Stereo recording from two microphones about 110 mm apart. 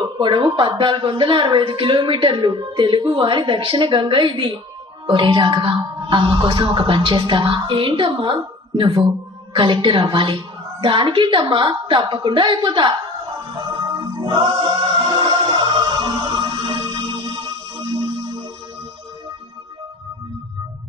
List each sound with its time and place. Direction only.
0.0 s speech: 45° right (ahead or behind)
13.7 s music: 45° right (ahead or behind)